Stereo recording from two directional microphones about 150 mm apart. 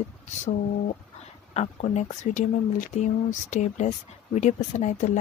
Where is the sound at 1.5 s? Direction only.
45° left (ahead or behind).